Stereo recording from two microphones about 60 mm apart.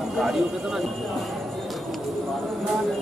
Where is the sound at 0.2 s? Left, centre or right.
Centre.